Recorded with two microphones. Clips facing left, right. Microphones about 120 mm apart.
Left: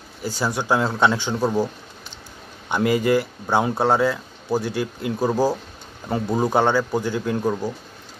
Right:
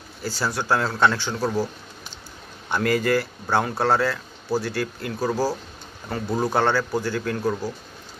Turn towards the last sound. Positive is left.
turn(degrees=20)  # may be behind; listen again after turning